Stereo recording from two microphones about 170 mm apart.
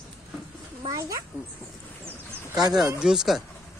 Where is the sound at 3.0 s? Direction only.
5° right (ahead or behind).